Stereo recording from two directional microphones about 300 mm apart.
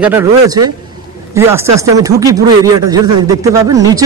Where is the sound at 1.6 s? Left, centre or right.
Right.